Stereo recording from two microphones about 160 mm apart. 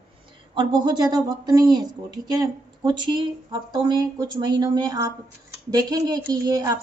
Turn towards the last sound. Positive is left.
turn(degrees=-25)  # may be behind; listen again after turning